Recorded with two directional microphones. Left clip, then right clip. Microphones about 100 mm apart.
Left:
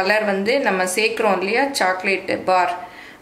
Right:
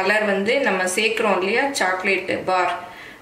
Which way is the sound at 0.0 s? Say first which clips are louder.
Left 1 dB; 40° left (ahead or behind).